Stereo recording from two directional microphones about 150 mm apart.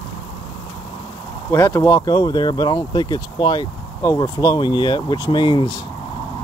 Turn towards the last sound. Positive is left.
turn(degrees=30)  # may be behind; listen again after turning